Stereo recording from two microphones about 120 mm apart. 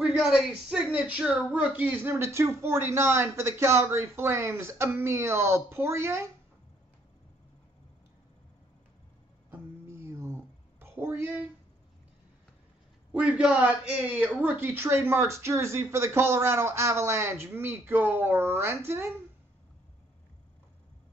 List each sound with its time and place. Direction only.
0.0 s a man's voice: 5° right (ahead or behind); by 6.3 s 20° right (ahead or behind)
9.5 s a sound: 20° right (ahead or behind)
13.1 s a man's voice: 10° right (ahead or behind)